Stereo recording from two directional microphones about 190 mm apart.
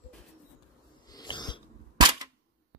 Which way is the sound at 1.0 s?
20° left (ahead or behind).